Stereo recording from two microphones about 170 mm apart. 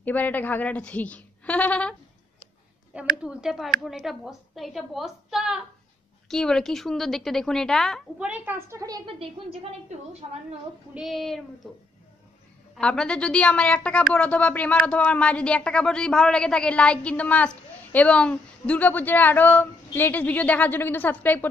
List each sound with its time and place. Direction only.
0.0 s a woman's voice: 10° left (ahead or behind)
3.2 s a woman's voice: 5° right (ahead or behind)
8.3 s a woman's voice: 15° right (ahead or behind)
9.2 s a woman's voice: 35° right (ahead or behind)
11.0 s a woman's voice: centre (ahead or behind)
12.7 s a woman's voice: 5° left (ahead or behind)